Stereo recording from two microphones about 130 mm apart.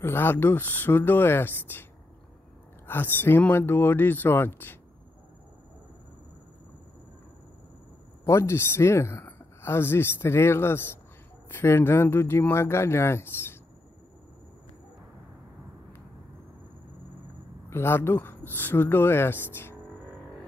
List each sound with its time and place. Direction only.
0.0 s speech: 15° left (ahead or behind)
2.9 s speech: 15° left (ahead or behind)
8.3 s speech: 20° left (ahead or behind)
17.6 s speech: 20° left (ahead or behind)